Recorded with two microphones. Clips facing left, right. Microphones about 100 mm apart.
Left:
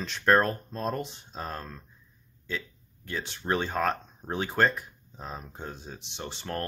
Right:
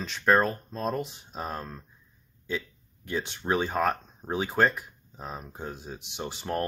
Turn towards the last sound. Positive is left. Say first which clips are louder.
# right 4 dB
turn(degrees=-10)  # may be behind; listen again after turning